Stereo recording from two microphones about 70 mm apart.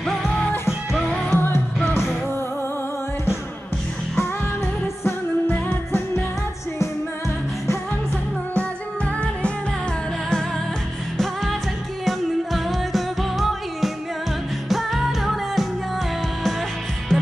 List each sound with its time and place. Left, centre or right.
0.0 s music: centre
1.3 s music: left
5.5 s music: left
12.0 s music: centre
17.1 s music: centre